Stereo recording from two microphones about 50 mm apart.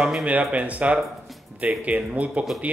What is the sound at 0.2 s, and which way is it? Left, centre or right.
Speech, right.